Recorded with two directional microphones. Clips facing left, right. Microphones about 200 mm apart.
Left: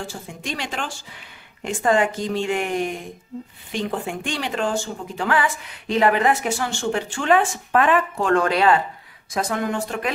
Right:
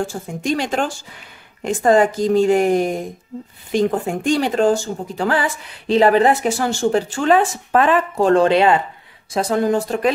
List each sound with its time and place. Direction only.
0.0 s speech: 45° right (ahead or behind)